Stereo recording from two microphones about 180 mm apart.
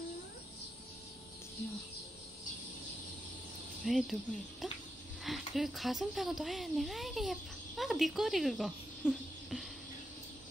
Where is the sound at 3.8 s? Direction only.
Centre (ahead or behind).